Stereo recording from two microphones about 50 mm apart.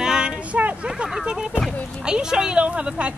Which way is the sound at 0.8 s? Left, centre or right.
Centre.